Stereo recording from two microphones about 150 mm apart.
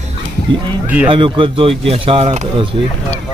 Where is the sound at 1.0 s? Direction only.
35° right (ahead or behind).